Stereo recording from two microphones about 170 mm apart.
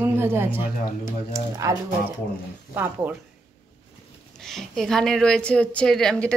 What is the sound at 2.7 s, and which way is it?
Speech, 10° right (ahead or behind).